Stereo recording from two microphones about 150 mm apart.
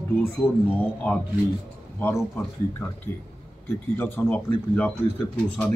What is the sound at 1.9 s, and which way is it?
Speech, 15° left (ahead or behind).